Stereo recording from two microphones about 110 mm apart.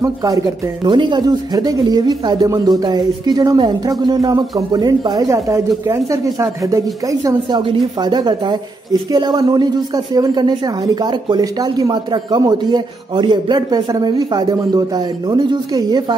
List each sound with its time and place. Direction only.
0.0 s speech: 35° right (ahead or behind)
0.8 s speech: 45° right (ahead or behind)